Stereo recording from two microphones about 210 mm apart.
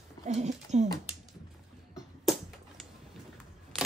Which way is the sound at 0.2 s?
35° right (ahead or behind).